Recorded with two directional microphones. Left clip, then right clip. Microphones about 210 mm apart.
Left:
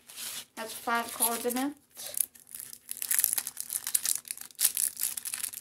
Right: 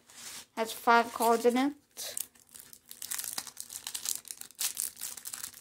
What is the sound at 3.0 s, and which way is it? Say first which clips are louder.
Crumpling: left 5 dB; 10° right (ahead or behind).